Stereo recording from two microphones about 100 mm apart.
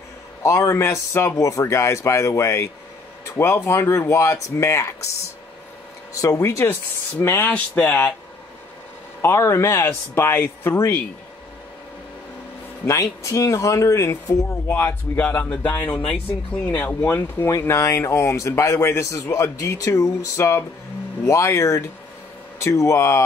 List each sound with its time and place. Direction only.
0.4 s speech: 30° left (ahead or behind)
6.2 s speech: 30° left (ahead or behind)
9.2 s speech: 30° left (ahead or behind)
12.8 s speech: 35° left (ahead or behind)
17.5 s speech: 30° left (ahead or behind)